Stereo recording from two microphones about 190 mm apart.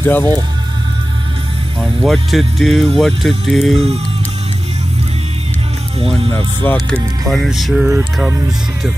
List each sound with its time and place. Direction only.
0.0 s speech: 10° left (ahead or behind)
1.8 s speech: centre (ahead or behind)
5.9 s speech: 30° right (ahead or behind)
6.6 s speech: 5° left (ahead or behind)